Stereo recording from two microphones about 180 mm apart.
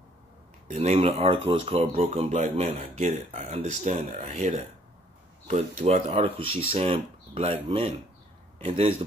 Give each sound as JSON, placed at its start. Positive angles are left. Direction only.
{"t": 0.7, "sound": "speech", "side_deg": -40}
{"t": 8.6, "sound": "speech", "side_deg": -35}